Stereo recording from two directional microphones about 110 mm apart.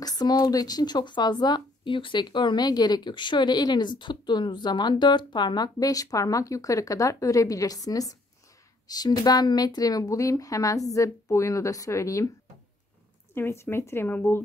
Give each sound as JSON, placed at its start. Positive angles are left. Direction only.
{"t": 0.0, "sound": "speech", "side_deg": 35}
{"t": 13.3, "sound": "speech", "side_deg": 20}